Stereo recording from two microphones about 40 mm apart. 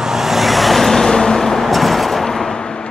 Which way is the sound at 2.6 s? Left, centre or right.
Left.